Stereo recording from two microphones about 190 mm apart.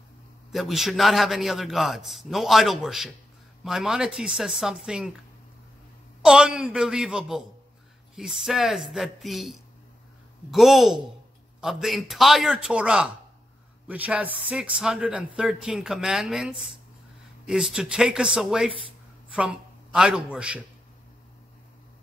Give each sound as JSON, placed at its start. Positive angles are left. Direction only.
{"t": 0.5, "sound": "speech", "side_deg": 0}
{"t": 6.2, "sound": "a man's voice", "side_deg": -5}